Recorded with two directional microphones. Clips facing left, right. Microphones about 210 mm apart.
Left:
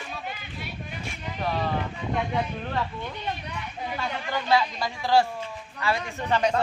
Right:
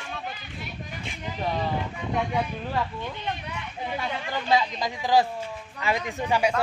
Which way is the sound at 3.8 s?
15° right (ahead or behind).